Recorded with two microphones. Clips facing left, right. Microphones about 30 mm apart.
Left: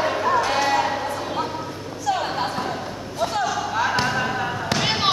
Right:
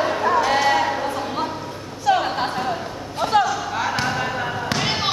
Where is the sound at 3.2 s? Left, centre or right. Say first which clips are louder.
Right 6 dB; centre.